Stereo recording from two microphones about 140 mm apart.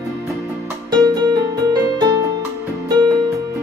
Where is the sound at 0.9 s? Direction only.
30° right (ahead or behind).